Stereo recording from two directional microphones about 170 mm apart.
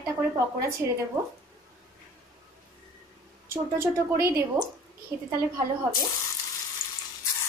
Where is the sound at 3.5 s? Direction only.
15° right (ahead or behind).